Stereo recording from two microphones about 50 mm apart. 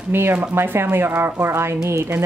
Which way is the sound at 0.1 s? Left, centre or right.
Right.